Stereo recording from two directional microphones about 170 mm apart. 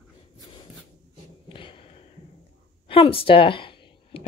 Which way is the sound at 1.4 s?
30° left (ahead or behind).